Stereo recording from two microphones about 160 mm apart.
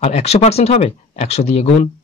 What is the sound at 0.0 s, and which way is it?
Speech, 40° left (ahead or behind).